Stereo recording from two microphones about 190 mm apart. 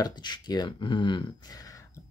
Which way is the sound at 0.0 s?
20° left (ahead or behind).